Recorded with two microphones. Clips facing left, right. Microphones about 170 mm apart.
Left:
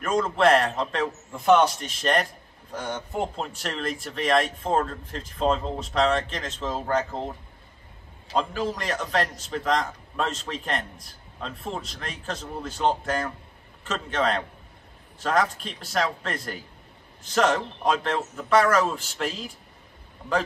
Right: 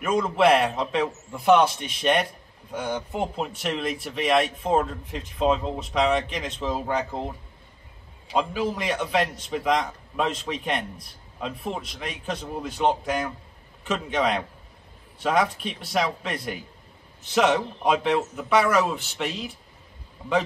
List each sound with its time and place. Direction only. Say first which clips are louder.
0.4 s speech: right 1 dB; 5° right (ahead or behind)
8.3 s a man's voice: right 1 dB; 5° right (ahead or behind)